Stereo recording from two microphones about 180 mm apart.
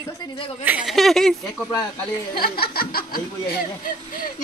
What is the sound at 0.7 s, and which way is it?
Speech, 5° right (ahead or behind).